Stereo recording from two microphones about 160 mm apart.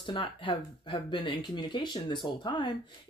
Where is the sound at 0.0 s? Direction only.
30° left (ahead or behind).